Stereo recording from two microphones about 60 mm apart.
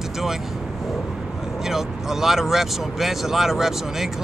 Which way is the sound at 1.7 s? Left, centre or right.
Centre.